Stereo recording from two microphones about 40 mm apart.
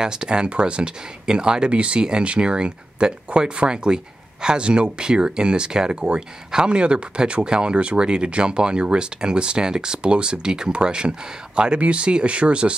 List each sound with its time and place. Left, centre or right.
0.0 s speech: right